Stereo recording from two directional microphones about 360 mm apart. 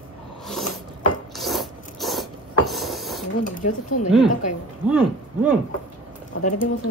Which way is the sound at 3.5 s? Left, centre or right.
Left.